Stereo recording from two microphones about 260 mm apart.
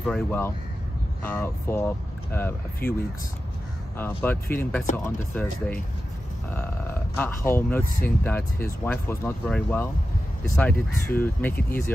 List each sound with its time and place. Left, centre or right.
0.0 s speech: centre
2.8 s speech: left
4.0 s speech: centre
6.5 s speech: centre